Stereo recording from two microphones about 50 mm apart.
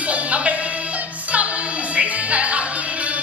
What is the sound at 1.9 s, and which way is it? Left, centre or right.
Music, right.